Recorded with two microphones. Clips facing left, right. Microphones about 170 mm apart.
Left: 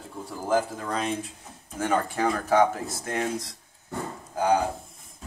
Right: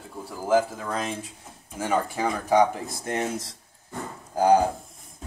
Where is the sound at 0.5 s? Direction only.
5° right (ahead or behind).